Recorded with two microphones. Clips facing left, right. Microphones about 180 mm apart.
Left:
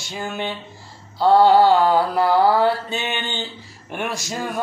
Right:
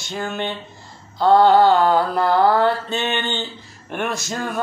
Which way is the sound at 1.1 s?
10° left (ahead or behind).